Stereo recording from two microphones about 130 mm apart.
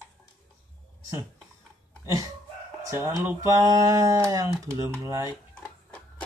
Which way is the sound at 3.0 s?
20° right (ahead or behind).